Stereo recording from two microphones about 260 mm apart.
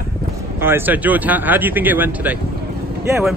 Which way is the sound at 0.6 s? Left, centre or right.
Centre.